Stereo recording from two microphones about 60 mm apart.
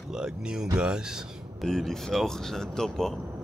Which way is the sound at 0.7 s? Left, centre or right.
Centre.